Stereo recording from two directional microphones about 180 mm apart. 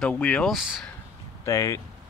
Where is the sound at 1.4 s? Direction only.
15° left (ahead or behind).